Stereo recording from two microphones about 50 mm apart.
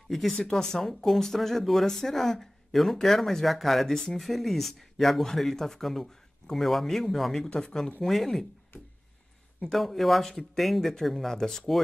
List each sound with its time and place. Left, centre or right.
0.1 s speech: centre
7.4 s speech: centre
8.0 s speech: centre
9.7 s speech: centre